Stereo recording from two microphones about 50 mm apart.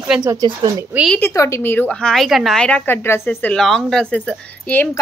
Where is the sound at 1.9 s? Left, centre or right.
Centre.